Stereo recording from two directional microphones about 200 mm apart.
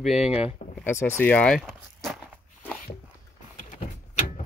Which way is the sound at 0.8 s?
10° left (ahead or behind).